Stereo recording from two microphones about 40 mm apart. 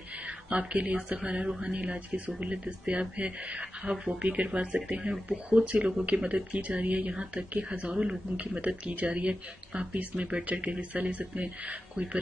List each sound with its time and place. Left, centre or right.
0.5 s speech: right
1.2 s speech: right
4.5 s speech: right
6.5 s speech: right
7.9 s speech: right
8.4 s speech: right